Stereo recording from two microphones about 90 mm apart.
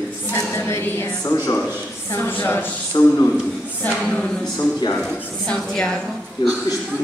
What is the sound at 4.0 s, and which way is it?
A woman's voice, 10° left (ahead or behind).